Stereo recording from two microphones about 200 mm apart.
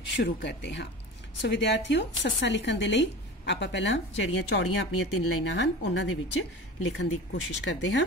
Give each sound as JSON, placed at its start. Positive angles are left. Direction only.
{"t": 0.2, "sound": "speech", "side_deg": 60}